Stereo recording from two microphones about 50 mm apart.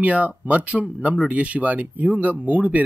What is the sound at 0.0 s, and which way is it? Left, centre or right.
A man's voice, right.